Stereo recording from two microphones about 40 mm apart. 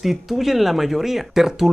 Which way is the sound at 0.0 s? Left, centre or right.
Centre.